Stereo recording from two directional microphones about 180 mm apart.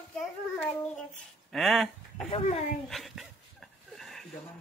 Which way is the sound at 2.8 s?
Centre (ahead or behind).